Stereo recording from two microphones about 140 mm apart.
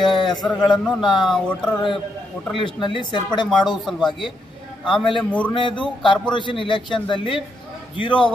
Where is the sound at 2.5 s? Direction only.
40° left (ahead or behind).